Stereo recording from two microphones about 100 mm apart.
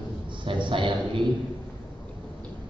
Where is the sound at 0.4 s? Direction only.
55° right (ahead or behind).